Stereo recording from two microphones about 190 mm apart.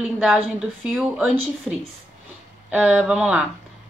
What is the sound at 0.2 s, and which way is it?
A woman's voice, 5° right (ahead or behind).